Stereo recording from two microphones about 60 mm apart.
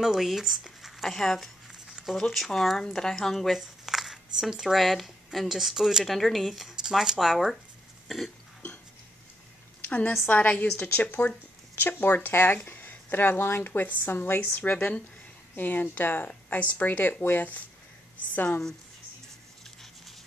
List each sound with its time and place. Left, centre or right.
0.0 s speech: centre
9.8 s a woman's voice: left
14.4 s speech: left